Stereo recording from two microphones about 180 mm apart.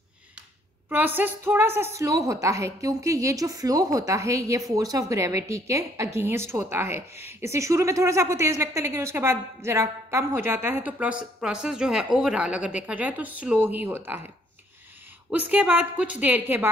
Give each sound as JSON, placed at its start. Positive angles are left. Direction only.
{"t": 0.8, "sound": "a woman's voice", "side_deg": -10}
{"t": 15.3, "sound": "a woman's voice", "side_deg": -10}